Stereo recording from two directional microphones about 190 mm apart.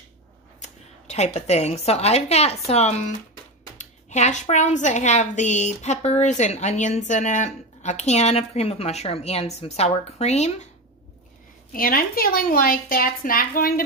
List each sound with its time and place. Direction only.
0.6 s a woman's voice: 35° left (ahead or behind)
11.7 s a woman's voice: 50° left (ahead or behind)